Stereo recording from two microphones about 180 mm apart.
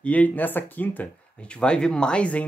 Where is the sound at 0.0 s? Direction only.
10° left (ahead or behind).